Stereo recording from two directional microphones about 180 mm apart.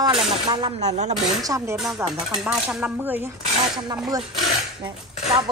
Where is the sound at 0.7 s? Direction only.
40° right (ahead or behind).